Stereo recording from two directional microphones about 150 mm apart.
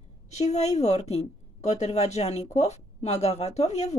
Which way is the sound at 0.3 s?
50° left (ahead or behind).